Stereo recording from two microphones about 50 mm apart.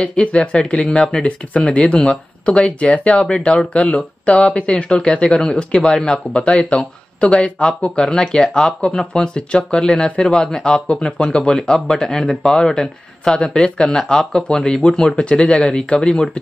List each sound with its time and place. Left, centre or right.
0.0 s speech: centre